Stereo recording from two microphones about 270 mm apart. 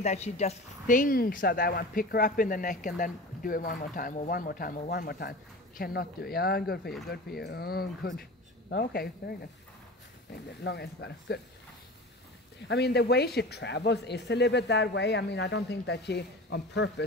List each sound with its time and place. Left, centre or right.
0.0 s a woman's voice: left
8.2 s a sound: left
10.6 s a woman's voice: left
12.6 s a woman's voice: left